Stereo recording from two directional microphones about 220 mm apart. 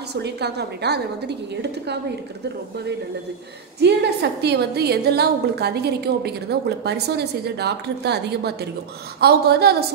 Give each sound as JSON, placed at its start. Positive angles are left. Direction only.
{"t": 0.1, "sound": "a woman's voice", "side_deg": -50}
{"t": 3.8, "sound": "a woman's voice", "side_deg": -50}